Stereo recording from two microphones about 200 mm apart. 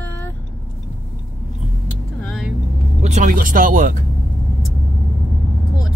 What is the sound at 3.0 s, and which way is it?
Speech, 35° right (ahead or behind).